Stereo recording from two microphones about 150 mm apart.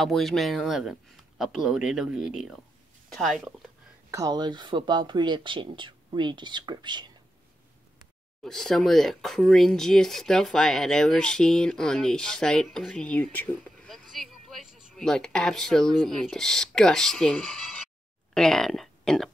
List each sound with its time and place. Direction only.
0.0 s speech: centre (ahead or behind)
4.1 s speech: 25° right (ahead or behind)
8.5 s speech: 5° left (ahead or behind)